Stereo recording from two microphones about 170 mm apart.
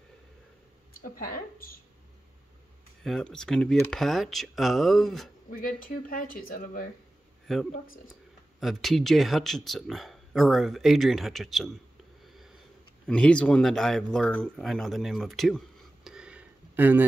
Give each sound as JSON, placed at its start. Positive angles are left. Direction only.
{"t": 0.9, "sound": "speech", "side_deg": 55}
{"t": 3.0, "sound": "speech", "side_deg": 5}
{"t": 5.8, "sound": "speech", "side_deg": 55}
{"t": 8.5, "sound": "speech", "side_deg": 0}
{"t": 12.3, "sound": "sniff", "side_deg": 0}
{"t": 13.0, "sound": "speech", "side_deg": 5}